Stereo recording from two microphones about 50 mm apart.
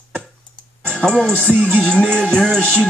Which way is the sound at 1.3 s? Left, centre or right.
Right.